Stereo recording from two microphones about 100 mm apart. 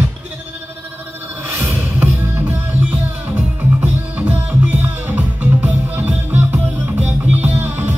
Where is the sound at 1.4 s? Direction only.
25° right (ahead or behind).